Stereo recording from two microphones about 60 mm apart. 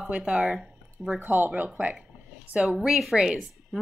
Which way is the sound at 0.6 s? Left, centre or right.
Centre.